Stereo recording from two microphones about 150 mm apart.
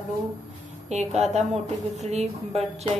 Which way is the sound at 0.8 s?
50° right (ahead or behind).